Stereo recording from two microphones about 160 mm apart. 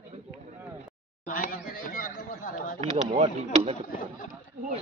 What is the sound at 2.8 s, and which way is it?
Speech, 45° right (ahead or behind).